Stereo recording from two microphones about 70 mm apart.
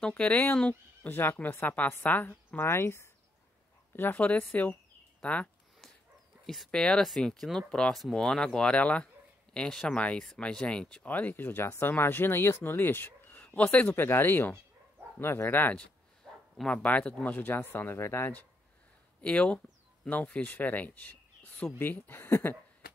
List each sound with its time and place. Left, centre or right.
0.1 s speech: left
6.4 s speech: centre
6.7 s speech: centre
11.1 s speech: left
19.2 s speech: centre